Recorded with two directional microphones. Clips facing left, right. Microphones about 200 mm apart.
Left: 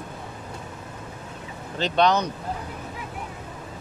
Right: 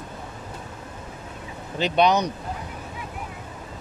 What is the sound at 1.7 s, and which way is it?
Speech, 10° right (ahead or behind).